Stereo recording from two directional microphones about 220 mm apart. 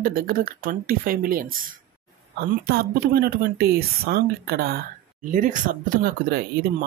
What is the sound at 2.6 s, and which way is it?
Speech, 45° right (ahead or behind).